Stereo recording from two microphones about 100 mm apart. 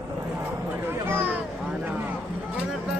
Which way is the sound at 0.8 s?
20° right (ahead or behind).